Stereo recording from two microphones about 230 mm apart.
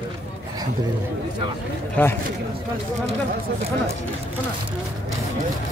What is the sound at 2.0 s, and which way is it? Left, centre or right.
Speech, centre.